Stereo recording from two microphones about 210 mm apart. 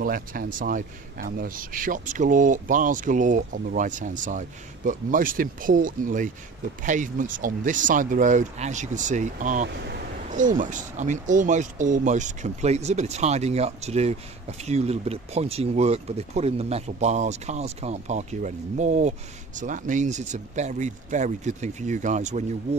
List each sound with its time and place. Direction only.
0.0 s speech: 45° right (ahead or behind)